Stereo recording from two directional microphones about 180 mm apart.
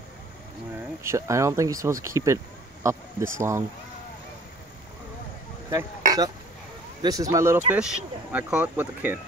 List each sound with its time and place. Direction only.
1.0 s speech: 15° right (ahead or behind)
5.7 s speech: 20° right (ahead or behind)